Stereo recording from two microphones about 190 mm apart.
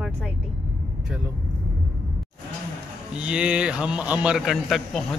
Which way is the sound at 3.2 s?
5° right (ahead or behind).